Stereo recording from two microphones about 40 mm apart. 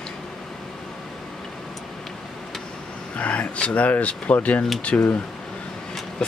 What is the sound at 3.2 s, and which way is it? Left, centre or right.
Speech, left.